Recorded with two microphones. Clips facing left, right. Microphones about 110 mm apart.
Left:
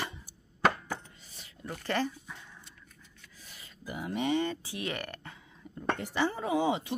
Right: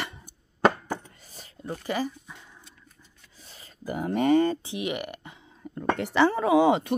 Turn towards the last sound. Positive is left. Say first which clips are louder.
# right 9 dB
turn(degrees=-70)  # may be behind; listen again after turning